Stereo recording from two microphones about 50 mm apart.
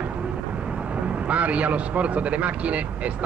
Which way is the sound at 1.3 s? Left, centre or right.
Right.